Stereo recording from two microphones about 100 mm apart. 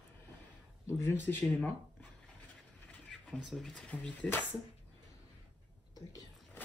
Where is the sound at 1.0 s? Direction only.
20° left (ahead or behind).